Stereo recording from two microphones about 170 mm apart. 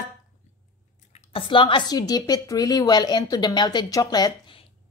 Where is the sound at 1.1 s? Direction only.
30° left (ahead or behind).